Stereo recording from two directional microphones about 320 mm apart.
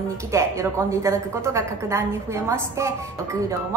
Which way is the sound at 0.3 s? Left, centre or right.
Centre.